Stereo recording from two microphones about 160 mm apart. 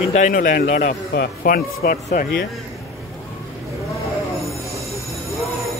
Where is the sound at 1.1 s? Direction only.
75° left (ahead or behind).